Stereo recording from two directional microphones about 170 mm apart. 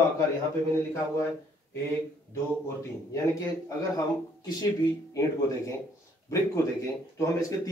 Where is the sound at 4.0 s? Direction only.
25° left (ahead or behind).